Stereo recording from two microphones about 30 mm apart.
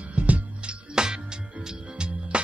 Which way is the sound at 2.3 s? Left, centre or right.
Right.